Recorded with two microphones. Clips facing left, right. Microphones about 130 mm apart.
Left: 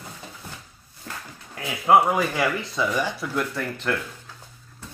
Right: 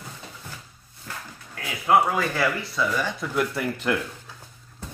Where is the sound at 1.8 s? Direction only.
20° left (ahead or behind).